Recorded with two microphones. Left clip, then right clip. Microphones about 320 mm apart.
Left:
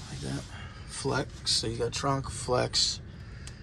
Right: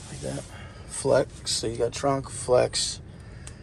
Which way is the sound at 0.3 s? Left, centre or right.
Centre.